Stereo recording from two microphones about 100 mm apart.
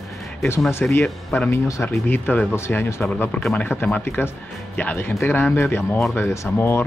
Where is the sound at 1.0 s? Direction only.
10° left (ahead or behind).